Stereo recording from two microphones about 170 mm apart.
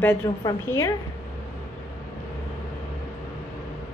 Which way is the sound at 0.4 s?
20° left (ahead or behind).